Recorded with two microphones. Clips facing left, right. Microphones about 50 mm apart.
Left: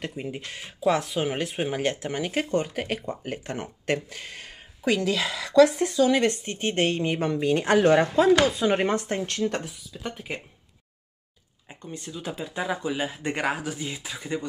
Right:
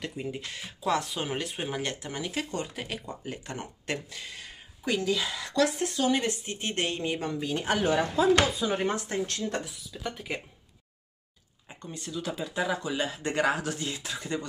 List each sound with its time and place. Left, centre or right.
0.0 s speech: left
4.8 s a woman's voice: left
6.2 s speech: left
7.2 s speech: left
10.0 s speech: centre
12.1 s speech: centre